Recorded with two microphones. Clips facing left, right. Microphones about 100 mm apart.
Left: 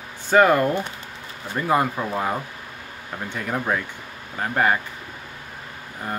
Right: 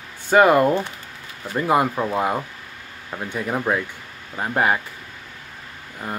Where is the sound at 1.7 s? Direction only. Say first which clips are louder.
Right 2 dB; 15° right (ahead or behind).